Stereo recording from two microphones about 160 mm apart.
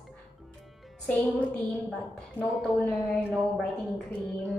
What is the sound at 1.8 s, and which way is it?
A woman's voice, centre (ahead or behind).